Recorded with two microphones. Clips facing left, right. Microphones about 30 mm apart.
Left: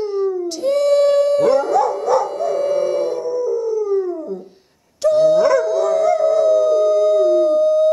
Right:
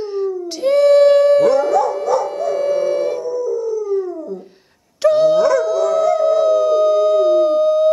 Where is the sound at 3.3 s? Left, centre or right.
Left.